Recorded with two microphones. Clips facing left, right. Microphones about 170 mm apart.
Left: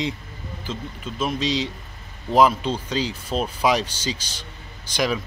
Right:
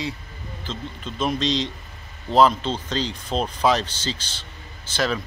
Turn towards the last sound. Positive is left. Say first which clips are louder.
# left 1 dB
turn(degrees=15)  # may be behind; listen again after turning